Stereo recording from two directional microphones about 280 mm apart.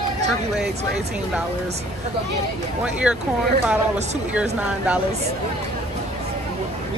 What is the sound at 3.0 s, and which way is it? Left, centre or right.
Speech, centre.